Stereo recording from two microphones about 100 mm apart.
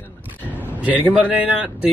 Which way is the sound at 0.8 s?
15° right (ahead or behind).